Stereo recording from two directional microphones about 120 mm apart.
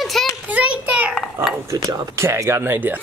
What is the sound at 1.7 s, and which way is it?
Speech, 30° right (ahead or behind).